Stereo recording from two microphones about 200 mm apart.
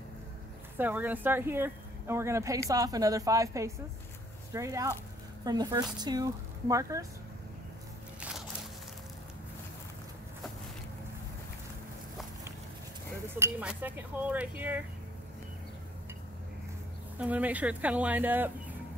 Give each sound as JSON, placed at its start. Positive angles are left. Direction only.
{"t": 0.7, "sound": "speech", "side_deg": -10}
{"t": 8.2, "sound": "a sound", "side_deg": -5}
{"t": 13.4, "sound": "speech", "side_deg": -10}
{"t": 17.2, "sound": "speech", "side_deg": -5}